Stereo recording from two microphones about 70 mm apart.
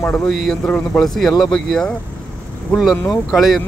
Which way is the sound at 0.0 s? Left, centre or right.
Centre.